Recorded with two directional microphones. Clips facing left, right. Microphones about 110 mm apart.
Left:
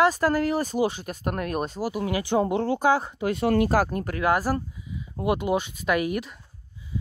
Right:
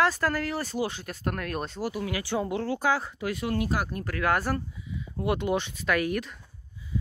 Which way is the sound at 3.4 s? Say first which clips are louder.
Left 8 dB; 55° left (ahead or behind).